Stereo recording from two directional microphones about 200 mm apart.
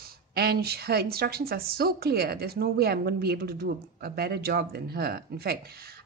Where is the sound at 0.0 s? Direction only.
50° right (ahead or behind).